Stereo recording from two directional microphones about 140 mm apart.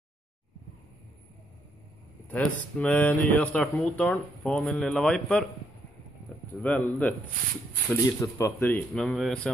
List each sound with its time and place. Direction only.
2.2 s speech: 10° left (ahead or behind)
6.6 s speech: 10° left (ahead or behind)
7.9 s speech: 20° left (ahead or behind)
8.9 s a man's voice: centre (ahead or behind)